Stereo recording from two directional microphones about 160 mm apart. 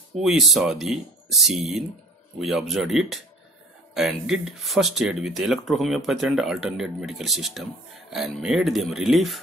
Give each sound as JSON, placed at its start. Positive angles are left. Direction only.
{"t": 0.1, "sound": "speech", "side_deg": 0}